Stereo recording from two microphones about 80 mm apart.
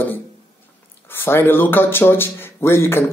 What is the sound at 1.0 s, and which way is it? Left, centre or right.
Speech, left.